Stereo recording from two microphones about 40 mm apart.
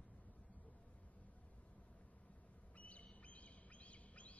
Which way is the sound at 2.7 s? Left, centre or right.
Left.